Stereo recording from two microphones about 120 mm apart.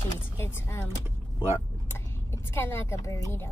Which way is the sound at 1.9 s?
20° left (ahead or behind).